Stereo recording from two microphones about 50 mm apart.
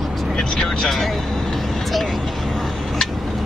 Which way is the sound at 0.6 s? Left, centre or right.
Centre.